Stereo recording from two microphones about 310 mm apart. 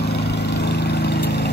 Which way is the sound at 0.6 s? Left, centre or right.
Left.